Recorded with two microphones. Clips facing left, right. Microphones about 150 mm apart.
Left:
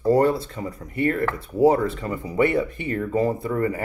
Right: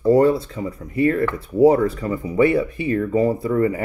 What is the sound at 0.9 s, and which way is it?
Speech, 35° right (ahead or behind).